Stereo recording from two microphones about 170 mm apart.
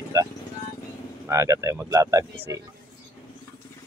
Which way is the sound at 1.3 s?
15° right (ahead or behind).